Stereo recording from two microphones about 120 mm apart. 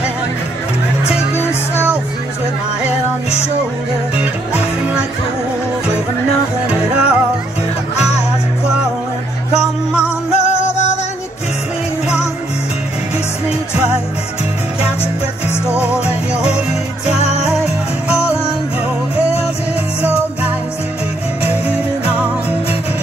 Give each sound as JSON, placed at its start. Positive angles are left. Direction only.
{"t": 4.2, "sound": "music", "side_deg": -10}
{"t": 6.7, "sound": "music", "side_deg": -10}
{"t": 9.6, "sound": "music", "side_deg": -5}
{"t": 10.3, "sound": "music", "side_deg": 65}
{"t": 16.4, "sound": "music", "side_deg": 65}
{"t": 20.0, "sound": "music", "side_deg": -10}